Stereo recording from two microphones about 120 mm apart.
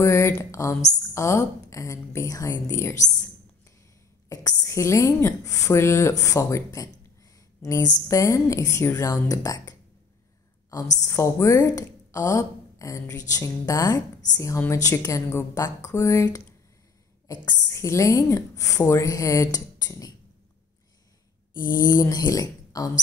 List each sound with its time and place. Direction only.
0.0 s a woman's voice: 25° left (ahead or behind)
4.3 s a woman's voice: 30° left (ahead or behind)
11.0 s a woman's voice: 25° left (ahead or behind)
21.6 s a sound: 35° left (ahead or behind)
22.0 s speech: 30° left (ahead or behind)